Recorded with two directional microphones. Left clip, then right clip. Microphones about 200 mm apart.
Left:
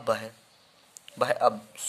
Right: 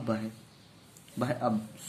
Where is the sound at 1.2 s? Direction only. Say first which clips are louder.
Left 8 dB; 35° left (ahead or behind).